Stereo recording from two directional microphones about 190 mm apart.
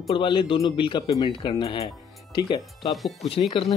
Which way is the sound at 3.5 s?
30° left (ahead or behind).